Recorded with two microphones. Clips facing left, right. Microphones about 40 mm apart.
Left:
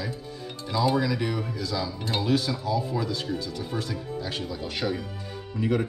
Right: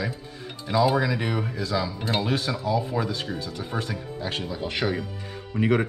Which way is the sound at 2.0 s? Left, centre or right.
Centre.